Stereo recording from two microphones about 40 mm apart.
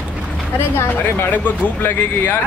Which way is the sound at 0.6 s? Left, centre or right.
Left.